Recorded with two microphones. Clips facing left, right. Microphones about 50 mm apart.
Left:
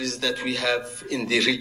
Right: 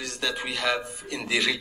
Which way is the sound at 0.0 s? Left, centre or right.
Centre.